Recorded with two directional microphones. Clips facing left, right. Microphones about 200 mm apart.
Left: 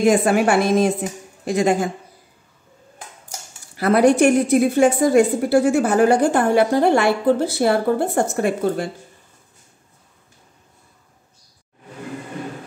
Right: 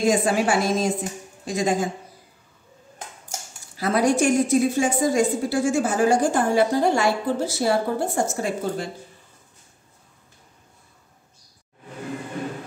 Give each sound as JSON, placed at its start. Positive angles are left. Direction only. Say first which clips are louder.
{"t": 0.0, "sound": "a woman's voice", "louder": "left 4 dB", "side_deg": 60}
{"t": 3.7, "sound": "a woman's voice", "louder": "left 6 dB", "side_deg": 60}